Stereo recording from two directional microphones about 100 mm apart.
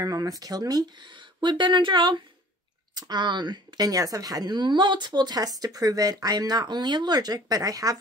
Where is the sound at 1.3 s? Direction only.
50° right (ahead or behind).